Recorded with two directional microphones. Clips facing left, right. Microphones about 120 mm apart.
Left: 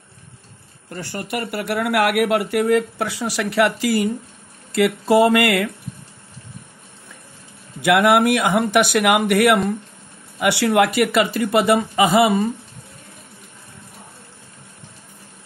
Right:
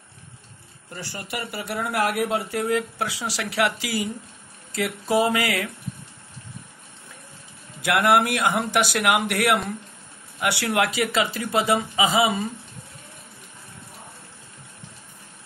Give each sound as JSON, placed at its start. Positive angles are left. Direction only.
{"t": 0.8, "sound": "speech", "side_deg": 55}
{"t": 4.7, "sound": "speech", "side_deg": 70}
{"t": 7.8, "sound": "speech", "side_deg": 60}